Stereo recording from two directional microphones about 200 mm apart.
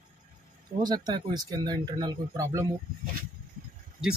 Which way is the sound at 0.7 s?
20° right (ahead or behind).